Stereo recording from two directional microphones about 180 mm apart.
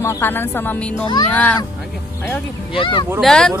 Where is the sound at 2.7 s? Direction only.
30° left (ahead or behind).